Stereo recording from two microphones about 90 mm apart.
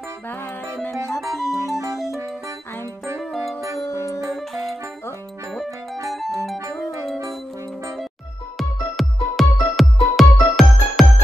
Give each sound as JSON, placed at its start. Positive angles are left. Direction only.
{"t": 1.3, "sound": "music", "side_deg": 0}
{"t": 3.8, "sound": "music", "side_deg": 35}
{"t": 4.3, "sound": "music", "side_deg": 0}
{"t": 6.2, "sound": "music", "side_deg": 0}
{"t": 8.5, "sound": "music", "side_deg": 0}